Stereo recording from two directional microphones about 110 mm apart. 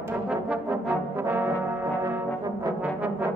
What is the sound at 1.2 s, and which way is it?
Brass instrument, 20° right (ahead or behind).